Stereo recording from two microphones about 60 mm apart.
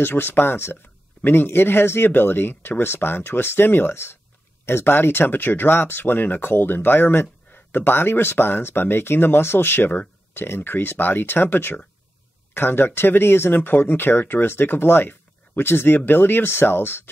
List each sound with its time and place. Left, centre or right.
0.0 s speech: left